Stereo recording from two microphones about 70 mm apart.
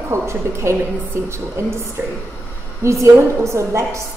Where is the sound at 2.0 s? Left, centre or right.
Right.